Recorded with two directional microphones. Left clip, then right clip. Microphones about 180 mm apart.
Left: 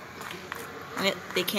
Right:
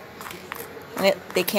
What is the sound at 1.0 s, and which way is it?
Speech, 35° right (ahead or behind).